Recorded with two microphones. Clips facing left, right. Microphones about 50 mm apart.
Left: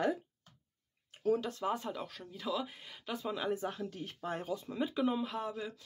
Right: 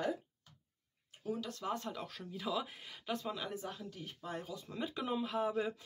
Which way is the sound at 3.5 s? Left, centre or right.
Left.